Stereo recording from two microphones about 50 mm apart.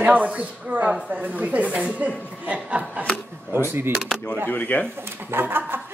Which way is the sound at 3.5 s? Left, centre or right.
Right.